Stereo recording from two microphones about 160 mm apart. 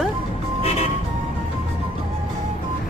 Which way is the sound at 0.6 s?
40° left (ahead or behind).